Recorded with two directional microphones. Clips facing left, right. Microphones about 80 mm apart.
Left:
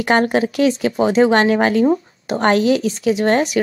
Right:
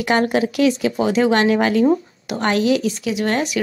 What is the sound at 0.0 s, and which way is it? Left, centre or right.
Speech, left.